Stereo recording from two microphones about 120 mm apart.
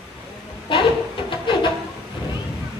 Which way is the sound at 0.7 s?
45° left (ahead or behind).